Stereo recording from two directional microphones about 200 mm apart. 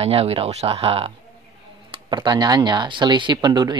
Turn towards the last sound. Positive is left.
turn(degrees=-20)  # may be behind; listen again after turning